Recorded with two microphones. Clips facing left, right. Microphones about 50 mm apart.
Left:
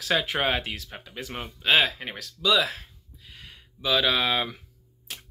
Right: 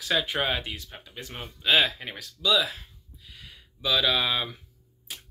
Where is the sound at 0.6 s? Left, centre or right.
Left.